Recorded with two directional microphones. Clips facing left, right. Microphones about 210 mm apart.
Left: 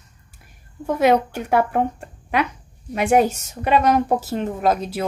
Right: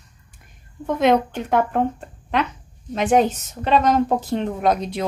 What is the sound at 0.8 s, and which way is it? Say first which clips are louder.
A woman's voice: even; 10° left (ahead or behind).